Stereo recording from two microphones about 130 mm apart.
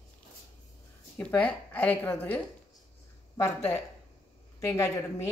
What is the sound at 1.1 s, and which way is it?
A woman's voice, 10° left (ahead or behind).